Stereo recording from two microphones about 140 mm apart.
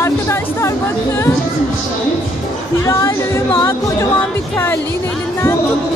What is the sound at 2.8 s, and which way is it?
Speech, 20° left (ahead or behind).